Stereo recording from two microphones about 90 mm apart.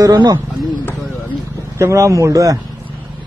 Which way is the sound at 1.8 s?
35° right (ahead or behind).